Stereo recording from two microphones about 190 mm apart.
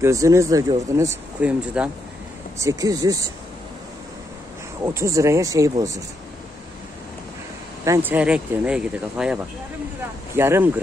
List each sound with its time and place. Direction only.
0.0 s speech: 15° right (ahead or behind)
4.8 s speech: 15° right (ahead or behind)
7.8 s speech: 15° right (ahead or behind)